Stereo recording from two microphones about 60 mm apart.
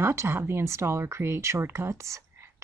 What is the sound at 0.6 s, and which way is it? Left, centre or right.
Speech, right.